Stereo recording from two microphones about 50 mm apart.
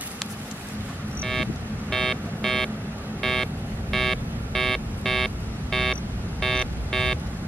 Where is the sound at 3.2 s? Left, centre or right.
Centre.